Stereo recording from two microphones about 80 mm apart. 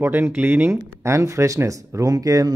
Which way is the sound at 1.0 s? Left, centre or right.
Right.